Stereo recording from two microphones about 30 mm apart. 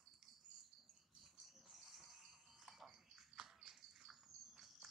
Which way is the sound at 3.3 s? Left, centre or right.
Right.